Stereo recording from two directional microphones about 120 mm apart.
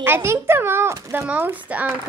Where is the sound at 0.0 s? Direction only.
20° right (ahead or behind).